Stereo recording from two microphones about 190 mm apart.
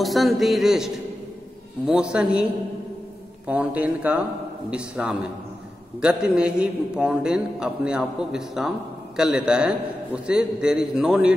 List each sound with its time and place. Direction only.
0.0 s a man's voice: centre (ahead or behind)
3.4 s a man's voice: 5° right (ahead or behind)